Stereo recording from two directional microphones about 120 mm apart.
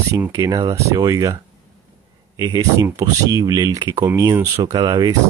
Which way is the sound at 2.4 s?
35° right (ahead or behind).